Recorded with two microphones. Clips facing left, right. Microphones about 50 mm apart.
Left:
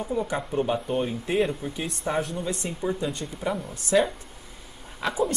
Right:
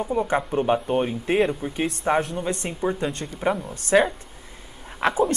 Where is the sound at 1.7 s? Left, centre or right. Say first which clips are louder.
Right 6 dB; right.